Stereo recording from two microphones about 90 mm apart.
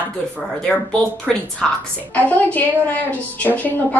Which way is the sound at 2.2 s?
20° left (ahead or behind).